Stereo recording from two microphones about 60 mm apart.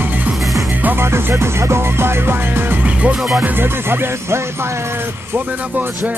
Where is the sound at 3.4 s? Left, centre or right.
Right.